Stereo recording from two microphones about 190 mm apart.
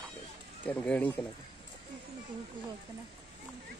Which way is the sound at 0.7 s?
5° left (ahead or behind).